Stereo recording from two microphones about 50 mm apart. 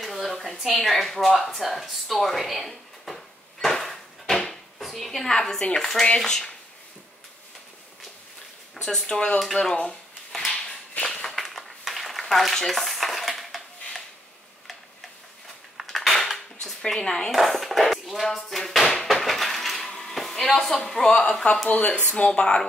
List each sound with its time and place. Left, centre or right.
0.0 s a sound: centre
0.7 s speech: centre
3.6 s a sound: centre
5.8 s speech: centre
9.0 s speech: centre
9.6 s a sound: centre
15.8 s creak: centre
16.9 s speech: centre
19.1 s crushing: centre
19.9 s speech: centre
21.6 s speech: left